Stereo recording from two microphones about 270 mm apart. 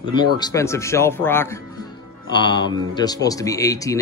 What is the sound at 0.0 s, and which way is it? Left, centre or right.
A man's voice, centre.